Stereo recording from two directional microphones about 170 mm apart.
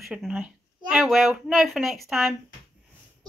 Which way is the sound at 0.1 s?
5° right (ahead or behind).